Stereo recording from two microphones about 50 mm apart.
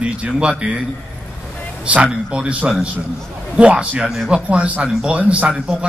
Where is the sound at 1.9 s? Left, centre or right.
Right.